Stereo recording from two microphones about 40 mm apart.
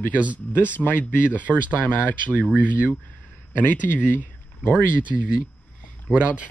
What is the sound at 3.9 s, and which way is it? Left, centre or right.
Speech, left.